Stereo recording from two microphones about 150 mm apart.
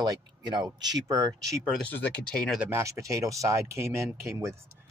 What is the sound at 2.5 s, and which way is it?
Speech, 15° right (ahead or behind).